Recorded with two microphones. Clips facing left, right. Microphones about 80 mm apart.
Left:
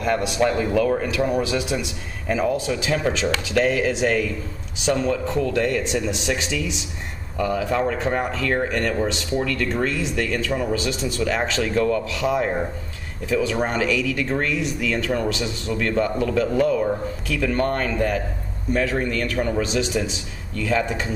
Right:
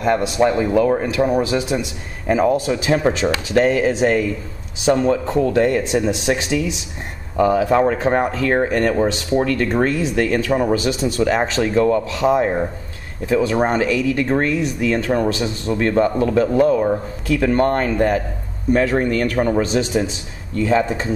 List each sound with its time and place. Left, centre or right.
0.0 s a man's voice: centre
9.7 s a man's voice: right
11.6 s a man's voice: right
18.7 s a man's voice: right